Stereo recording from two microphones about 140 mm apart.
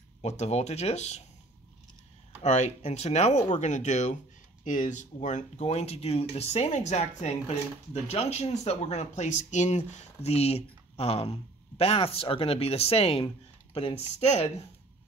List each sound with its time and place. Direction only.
0.2 s speech: 50° left (ahead or behind)
2.4 s speech: 55° left (ahead or behind)